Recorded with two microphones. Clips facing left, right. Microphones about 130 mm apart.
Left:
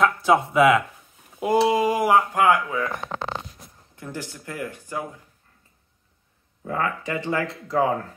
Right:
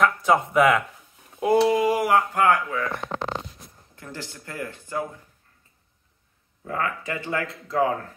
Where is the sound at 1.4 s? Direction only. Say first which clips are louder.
Even; 20° left (ahead or behind).